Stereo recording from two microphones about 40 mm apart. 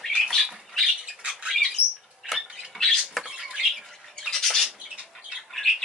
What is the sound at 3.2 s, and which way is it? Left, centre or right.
Rodents, centre.